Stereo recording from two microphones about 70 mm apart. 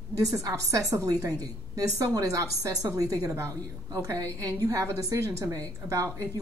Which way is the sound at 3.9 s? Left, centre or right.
Right.